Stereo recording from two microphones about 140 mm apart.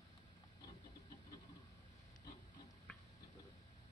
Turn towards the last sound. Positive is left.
turn(degrees=5)  # may be behind; listen again after turning